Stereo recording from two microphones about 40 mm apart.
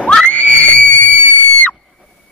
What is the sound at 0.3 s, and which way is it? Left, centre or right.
Screaming, left.